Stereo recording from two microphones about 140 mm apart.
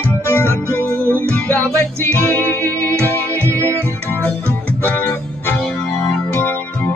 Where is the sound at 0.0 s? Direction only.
15° left (ahead or behind).